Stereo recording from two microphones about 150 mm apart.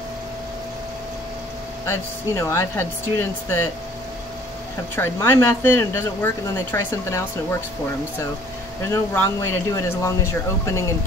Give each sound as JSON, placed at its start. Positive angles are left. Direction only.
{"t": 1.9, "sound": "speech", "side_deg": 20}
{"t": 4.9, "sound": "speech", "side_deg": 15}
{"t": 8.8, "sound": "speech", "side_deg": 20}